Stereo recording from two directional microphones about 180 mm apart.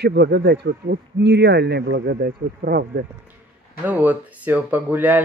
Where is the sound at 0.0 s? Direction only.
65° right (ahead or behind).